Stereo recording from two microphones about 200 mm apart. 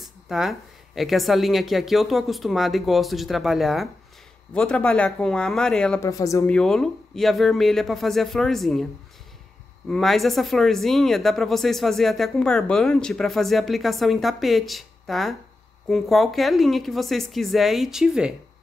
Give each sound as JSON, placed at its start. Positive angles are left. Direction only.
{"t": 0.0, "sound": "speech", "side_deg": 0}
{"t": 6.0, "sound": "speech", "side_deg": 15}
{"t": 6.5, "sound": "speech", "side_deg": 5}
{"t": 9.8, "sound": "speech", "side_deg": 0}